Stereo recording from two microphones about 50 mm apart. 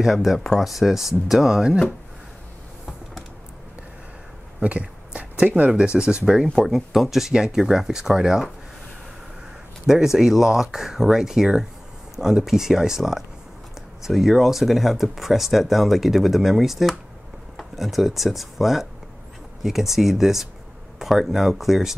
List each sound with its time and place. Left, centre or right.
0.0 s speech: centre
4.6 s a sound: right
5.9 s speech: centre
6.7 s speech: centre
9.8 s speech: centre